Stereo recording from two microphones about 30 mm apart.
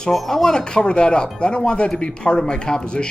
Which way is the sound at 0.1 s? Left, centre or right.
Centre.